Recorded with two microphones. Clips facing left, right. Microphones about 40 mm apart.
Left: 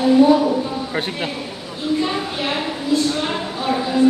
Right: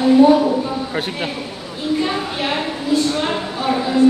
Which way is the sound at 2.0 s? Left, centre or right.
Centre.